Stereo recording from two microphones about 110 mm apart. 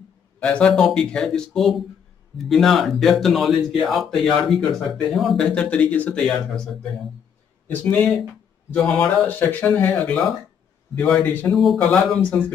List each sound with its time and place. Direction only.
0.4 s speech: 10° left (ahead or behind)
11.5 s speech: centre (ahead or behind)
11.8 s speech: 15° left (ahead or behind)